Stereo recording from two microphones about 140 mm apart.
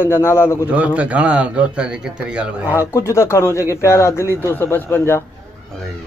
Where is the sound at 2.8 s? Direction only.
20° left (ahead or behind).